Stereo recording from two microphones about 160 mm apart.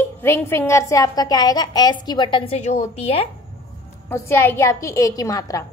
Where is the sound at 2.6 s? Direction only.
45° left (ahead or behind).